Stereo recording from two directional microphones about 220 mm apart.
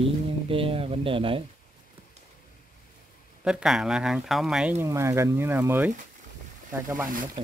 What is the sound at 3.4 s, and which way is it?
Speech, 5° right (ahead or behind).